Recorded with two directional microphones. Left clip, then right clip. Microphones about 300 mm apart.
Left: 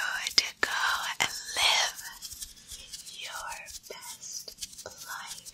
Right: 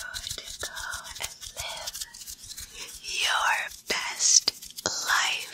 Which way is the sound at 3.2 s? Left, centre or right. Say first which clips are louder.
Right 15 dB; right.